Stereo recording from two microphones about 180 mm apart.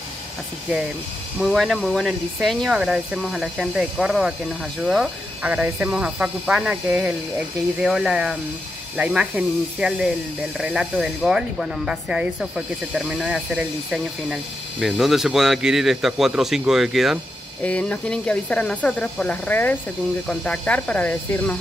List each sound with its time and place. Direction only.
1.4 s speech: centre (ahead or behind)